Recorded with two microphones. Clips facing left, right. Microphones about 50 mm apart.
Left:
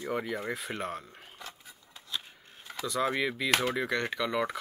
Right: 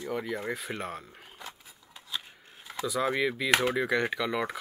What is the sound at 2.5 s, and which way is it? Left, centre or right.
Speech, centre.